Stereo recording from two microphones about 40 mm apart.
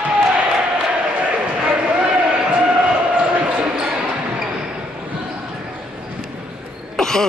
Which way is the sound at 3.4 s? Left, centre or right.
Right.